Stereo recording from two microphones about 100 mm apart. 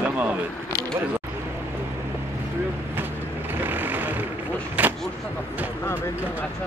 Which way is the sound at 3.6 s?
20° right (ahead or behind).